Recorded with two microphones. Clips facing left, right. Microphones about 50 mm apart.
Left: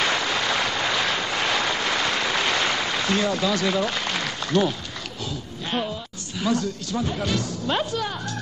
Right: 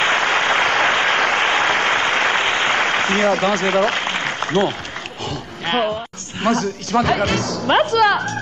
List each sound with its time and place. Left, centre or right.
0.0 s applause: right
2.8 s a man's voice: right
5.7 s a woman's voice: right